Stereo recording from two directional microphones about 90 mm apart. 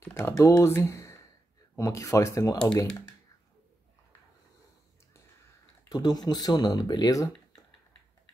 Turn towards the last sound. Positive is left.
turn(degrees=40)  # may be behind; listen again after turning